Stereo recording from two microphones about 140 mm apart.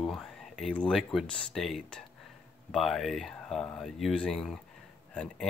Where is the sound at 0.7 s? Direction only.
5° left (ahead or behind).